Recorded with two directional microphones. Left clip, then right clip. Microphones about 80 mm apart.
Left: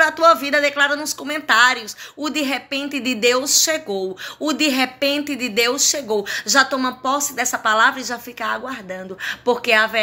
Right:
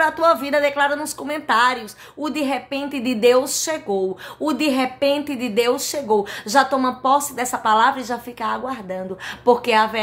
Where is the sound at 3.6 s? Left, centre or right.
Right.